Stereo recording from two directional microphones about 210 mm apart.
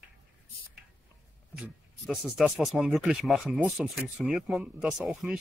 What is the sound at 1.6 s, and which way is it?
Speech, centre (ahead or behind).